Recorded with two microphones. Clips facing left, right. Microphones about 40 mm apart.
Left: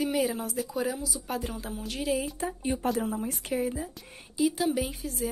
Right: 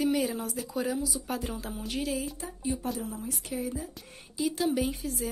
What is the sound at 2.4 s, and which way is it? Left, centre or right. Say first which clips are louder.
Speech: left 4 dB; left.